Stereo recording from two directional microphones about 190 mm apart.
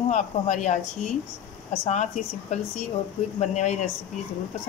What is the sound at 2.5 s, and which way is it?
Speech, 35° left (ahead or behind).